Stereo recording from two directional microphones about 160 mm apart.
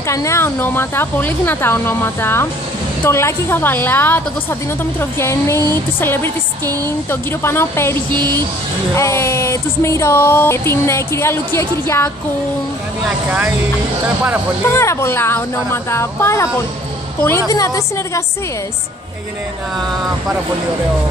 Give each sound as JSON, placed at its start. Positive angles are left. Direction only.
{"t": 0.1, "sound": "speech", "side_deg": 20}
{"t": 8.1, "sound": "a sound", "side_deg": -25}
{"t": 8.9, "sound": "speech", "side_deg": 20}
{"t": 14.7, "sound": "speech", "side_deg": 15}
{"t": 17.5, "sound": "a woman's voice", "side_deg": 20}